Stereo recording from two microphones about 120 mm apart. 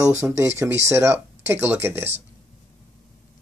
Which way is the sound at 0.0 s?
25° right (ahead or behind).